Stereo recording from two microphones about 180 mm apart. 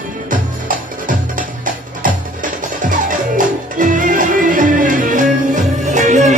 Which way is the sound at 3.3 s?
50° right (ahead or behind).